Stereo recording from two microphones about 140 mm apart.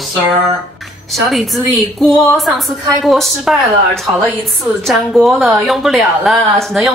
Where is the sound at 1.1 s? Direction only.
Centre (ahead or behind).